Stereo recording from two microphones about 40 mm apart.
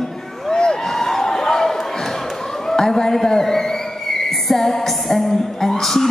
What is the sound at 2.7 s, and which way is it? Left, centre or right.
Music, centre.